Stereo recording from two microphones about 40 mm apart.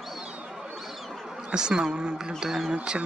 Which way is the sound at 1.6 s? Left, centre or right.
Centre.